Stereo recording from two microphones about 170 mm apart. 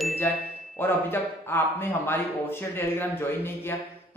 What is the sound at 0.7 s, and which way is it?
A man's voice, 10° left (ahead or behind).